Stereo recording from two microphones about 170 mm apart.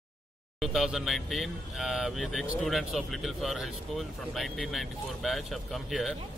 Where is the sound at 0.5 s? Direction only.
5° right (ahead or behind).